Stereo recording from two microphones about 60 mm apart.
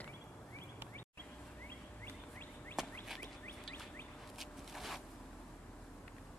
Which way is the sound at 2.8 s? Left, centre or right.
Centre.